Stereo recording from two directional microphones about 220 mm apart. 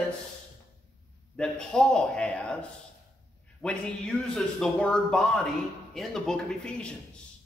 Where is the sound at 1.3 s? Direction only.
5° left (ahead or behind).